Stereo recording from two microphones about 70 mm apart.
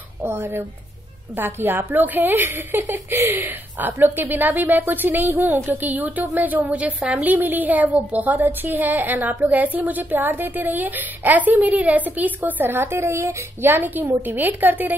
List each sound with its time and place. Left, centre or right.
0.2 s a woman's voice: right